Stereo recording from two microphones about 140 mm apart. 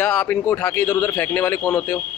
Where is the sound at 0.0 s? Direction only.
15° left (ahead or behind).